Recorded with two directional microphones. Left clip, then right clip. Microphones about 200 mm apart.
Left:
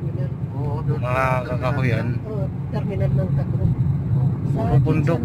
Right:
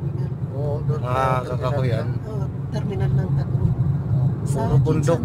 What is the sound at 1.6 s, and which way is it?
Speech, centre (ahead or behind).